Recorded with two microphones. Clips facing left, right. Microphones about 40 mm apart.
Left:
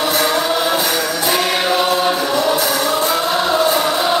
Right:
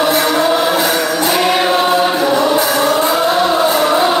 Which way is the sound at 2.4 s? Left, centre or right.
Right.